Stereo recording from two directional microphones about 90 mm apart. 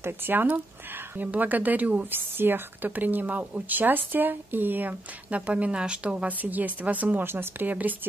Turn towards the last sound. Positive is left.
turn(degrees=-20)  # may be behind; listen again after turning